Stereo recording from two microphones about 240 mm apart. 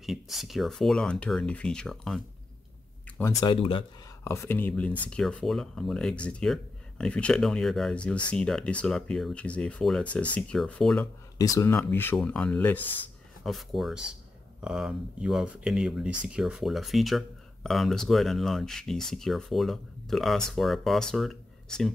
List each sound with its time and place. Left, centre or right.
0.0 s speech: centre; by 3.8 s left
4.2 s speech: centre